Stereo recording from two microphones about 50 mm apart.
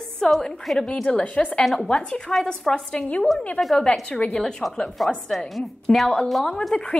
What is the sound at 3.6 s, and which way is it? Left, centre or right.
Speech, left.